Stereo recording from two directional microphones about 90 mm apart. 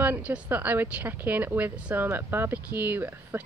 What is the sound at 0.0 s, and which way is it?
A woman's voice, 15° right (ahead or behind).